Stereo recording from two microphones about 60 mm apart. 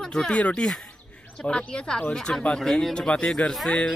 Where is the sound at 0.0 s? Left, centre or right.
Centre.